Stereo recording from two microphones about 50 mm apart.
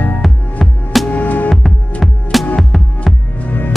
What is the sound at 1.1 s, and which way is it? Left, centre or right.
Music, left.